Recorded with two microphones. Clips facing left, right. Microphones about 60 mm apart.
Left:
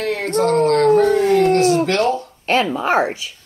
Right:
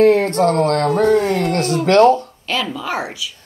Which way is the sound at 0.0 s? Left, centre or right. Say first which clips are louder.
Right 6 dB; right.